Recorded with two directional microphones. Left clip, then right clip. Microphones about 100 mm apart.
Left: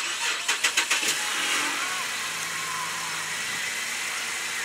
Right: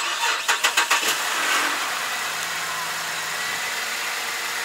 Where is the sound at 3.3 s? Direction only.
35° right (ahead or behind).